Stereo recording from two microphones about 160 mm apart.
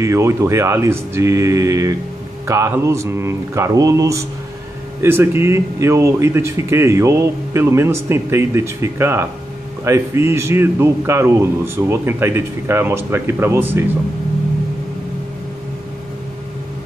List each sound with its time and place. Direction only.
0.0 s speech: 15° right (ahead or behind)